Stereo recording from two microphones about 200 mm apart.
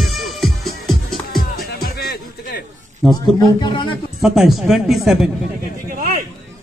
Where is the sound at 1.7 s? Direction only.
50° left (ahead or behind).